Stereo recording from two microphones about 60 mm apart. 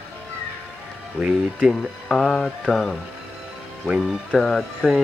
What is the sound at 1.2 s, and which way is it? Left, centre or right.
Speech, right.